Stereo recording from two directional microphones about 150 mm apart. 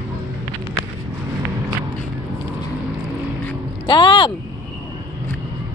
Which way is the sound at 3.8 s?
30° left (ahead or behind).